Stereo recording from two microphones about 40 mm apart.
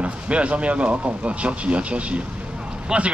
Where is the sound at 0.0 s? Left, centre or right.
Right.